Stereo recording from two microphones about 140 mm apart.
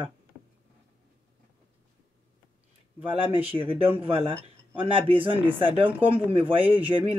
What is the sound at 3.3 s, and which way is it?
Speech, 40° right (ahead or behind).